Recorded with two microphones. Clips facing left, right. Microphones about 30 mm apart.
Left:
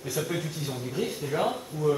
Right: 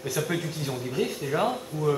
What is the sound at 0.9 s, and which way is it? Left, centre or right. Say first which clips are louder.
Speech: right 2 dB; centre.